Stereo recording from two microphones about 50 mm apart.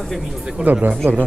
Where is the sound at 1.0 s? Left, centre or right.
Right.